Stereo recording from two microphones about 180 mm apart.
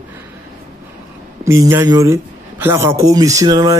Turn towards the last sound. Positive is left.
turn(degrees=-20)  # may be behind; listen again after turning